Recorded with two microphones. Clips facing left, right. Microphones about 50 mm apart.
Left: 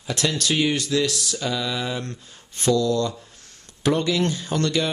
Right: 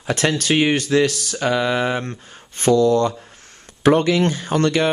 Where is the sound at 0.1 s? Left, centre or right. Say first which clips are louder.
Right 5 dB; right.